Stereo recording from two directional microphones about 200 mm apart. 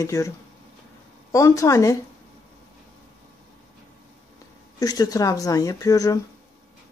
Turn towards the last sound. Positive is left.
turn(degrees=15)  # may be behind; listen again after turning